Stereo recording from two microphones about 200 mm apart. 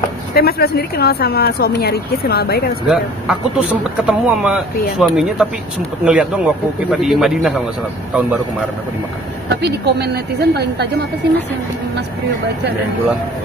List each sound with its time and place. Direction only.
0.3 s a woman's voice: 50° left (ahead or behind)
2.9 s speech: 5° right (ahead or behind)
9.6 s a woman's voice: 55° right (ahead or behind)